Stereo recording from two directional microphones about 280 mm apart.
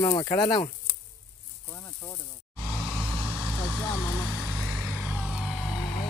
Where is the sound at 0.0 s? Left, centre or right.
Centre.